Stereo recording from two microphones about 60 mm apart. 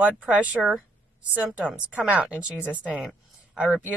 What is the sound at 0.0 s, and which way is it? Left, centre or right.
Speech, right.